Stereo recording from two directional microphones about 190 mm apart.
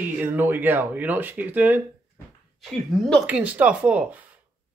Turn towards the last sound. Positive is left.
turn(degrees=-5)  # may be behind; listen again after turning